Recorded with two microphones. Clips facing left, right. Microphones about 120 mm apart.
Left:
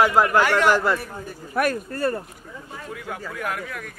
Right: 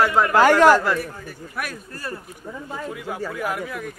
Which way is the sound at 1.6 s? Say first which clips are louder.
Left 10 dB; 50° left (ahead or behind).